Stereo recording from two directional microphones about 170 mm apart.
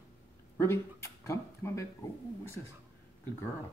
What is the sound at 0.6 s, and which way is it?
Speech, 15° left (ahead or behind).